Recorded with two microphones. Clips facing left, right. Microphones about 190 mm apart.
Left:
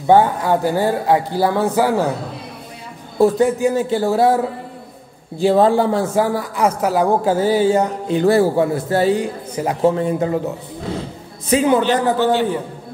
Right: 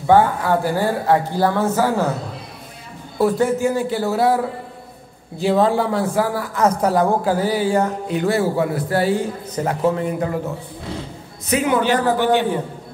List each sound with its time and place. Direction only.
0.0 s speech: 20° left (ahead or behind)
3.2 s a man's voice: 20° left (ahead or behind)
5.4 s a man's voice: 30° left (ahead or behind); by 7.1 s 10° left (ahead or behind)
7.2 s a man's voice: 25° left (ahead or behind)
8.2 s a man's voice: 35° left (ahead or behind)
11.8 s a man's voice: 15° right (ahead or behind)